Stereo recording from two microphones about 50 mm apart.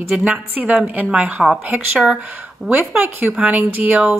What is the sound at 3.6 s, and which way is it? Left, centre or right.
Speech, right.